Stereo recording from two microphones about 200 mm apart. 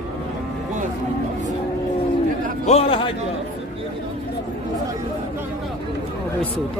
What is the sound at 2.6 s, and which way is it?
Speech, 30° left (ahead or behind).